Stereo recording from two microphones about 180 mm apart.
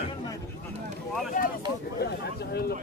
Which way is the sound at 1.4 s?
50° left (ahead or behind).